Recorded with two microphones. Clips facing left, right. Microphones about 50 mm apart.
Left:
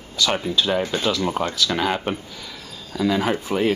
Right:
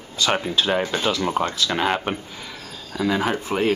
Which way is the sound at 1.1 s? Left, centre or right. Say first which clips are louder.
Even; centre.